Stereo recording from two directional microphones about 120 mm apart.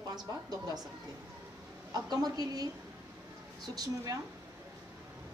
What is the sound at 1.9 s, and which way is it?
A woman's voice, 35° right (ahead or behind).